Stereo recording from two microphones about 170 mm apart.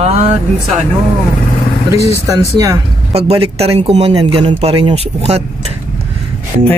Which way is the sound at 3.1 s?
35° right (ahead or behind).